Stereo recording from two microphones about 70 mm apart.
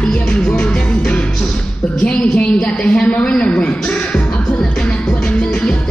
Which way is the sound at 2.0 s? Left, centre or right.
Centre.